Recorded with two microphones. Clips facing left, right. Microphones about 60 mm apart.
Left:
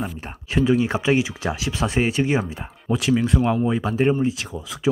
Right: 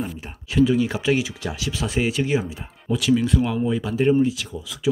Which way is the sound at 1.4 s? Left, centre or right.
Left.